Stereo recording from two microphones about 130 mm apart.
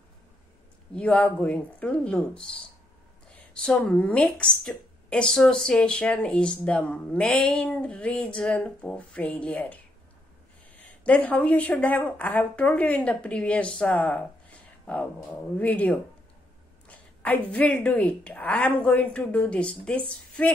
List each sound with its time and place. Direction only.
0.9 s a woman's voice: 10° left (ahead or behind)
11.1 s a woman's voice: 10° left (ahead or behind)
15.5 s a woman's voice: 10° left (ahead or behind)